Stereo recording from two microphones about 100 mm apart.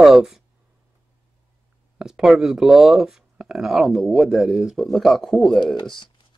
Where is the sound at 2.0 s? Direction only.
5° right (ahead or behind).